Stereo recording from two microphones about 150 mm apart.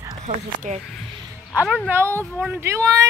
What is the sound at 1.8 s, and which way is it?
Speech, 15° right (ahead or behind).